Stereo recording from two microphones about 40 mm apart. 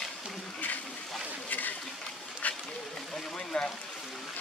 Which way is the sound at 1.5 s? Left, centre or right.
Left.